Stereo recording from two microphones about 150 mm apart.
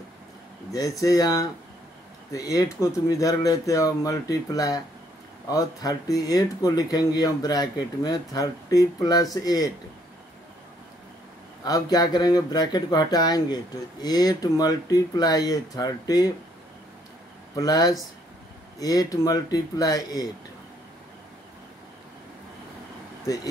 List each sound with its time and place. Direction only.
0.7 s speech: 25° left (ahead or behind)
11.6 s speech: 25° left (ahead or behind)
17.6 s speech: 25° left (ahead or behind)